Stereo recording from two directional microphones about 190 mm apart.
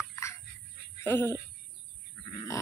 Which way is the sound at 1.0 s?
10° left (ahead or behind).